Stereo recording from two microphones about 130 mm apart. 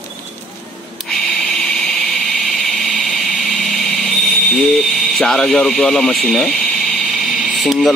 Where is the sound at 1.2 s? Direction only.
5° left (ahead or behind).